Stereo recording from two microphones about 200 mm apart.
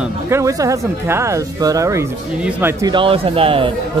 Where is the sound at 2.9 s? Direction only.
25° right (ahead or behind).